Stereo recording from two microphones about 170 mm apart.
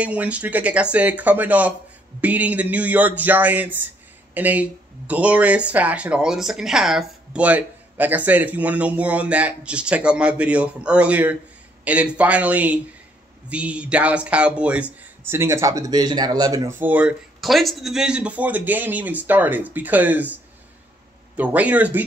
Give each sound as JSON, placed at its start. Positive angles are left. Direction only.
{"t": 0.0, "sound": "speech", "side_deg": -10}
{"t": 16.8, "sound": "speech", "side_deg": -10}
{"t": 21.4, "sound": "speech", "side_deg": -10}